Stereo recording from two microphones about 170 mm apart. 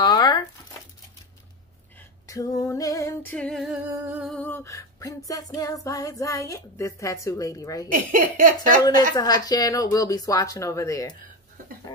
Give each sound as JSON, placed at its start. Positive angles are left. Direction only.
{"t": 0.0, "sound": "a sound", "side_deg": 25}
{"t": 2.0, "sound": "female singing", "side_deg": 20}
{"t": 3.9, "sound": "humming", "side_deg": -10}
{"t": 4.3, "sound": "female singing", "side_deg": 10}
{"t": 5.9, "sound": "speech", "side_deg": 20}
{"t": 7.9, "sound": "speech", "side_deg": -50}
{"t": 9.1, "sound": "speech", "side_deg": 25}